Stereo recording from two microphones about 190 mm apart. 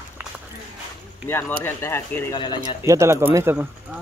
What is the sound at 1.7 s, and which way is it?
Speech, 15° left (ahead or behind).